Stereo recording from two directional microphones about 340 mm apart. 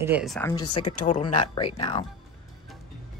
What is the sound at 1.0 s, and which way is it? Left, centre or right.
Speech, centre.